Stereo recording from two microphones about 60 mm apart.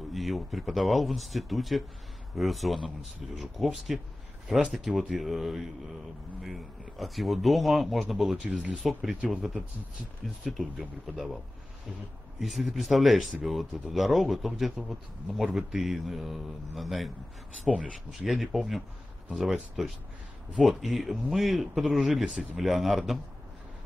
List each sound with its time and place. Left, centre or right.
0.1 s speech: centre
8.5 s speech: right
8.7 s speech: centre
12.4 s speech: centre
19.8 s speech: centre